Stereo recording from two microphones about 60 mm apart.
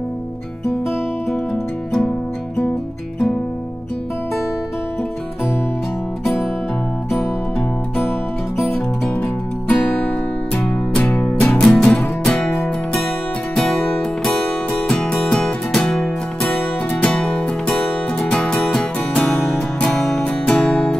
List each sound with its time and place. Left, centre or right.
8.7 s music: left
12.2 s music: centre
13.6 s music: centre
16.9 s music: left
18.3 s music: centre
20.2 s music: centre